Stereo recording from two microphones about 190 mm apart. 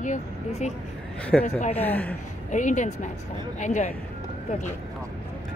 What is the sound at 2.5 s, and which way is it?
Speech, 40° left (ahead or behind).